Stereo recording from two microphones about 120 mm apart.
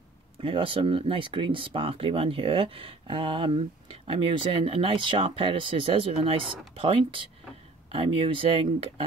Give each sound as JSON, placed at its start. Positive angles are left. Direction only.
{"t": 0.4, "sound": "speech", "side_deg": -50}